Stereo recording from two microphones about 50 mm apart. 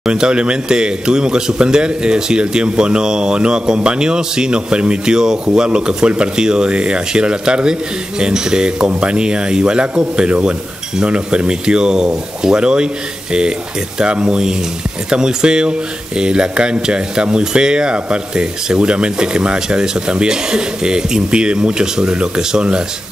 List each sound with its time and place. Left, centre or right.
0.0 s a man's voice: centre